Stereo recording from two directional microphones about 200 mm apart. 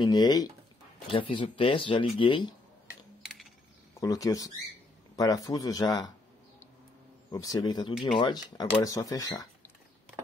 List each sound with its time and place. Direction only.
0.0 s speech: 20° left (ahead or behind)
3.2 s typing: centre (ahead or behind)
4.0 s speech: 15° left (ahead or behind)
7.2 s speech: 20° left (ahead or behind)